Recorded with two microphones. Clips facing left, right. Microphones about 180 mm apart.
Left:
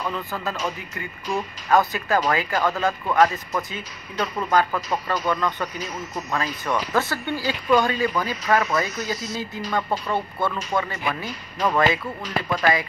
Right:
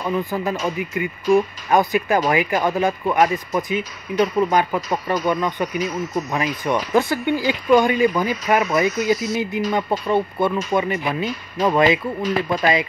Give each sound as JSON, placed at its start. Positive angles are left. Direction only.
{"t": 0.0, "sound": "speech", "side_deg": -15}